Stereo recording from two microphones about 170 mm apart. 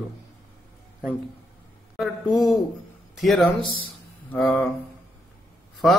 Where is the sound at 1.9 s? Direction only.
Centre (ahead or behind).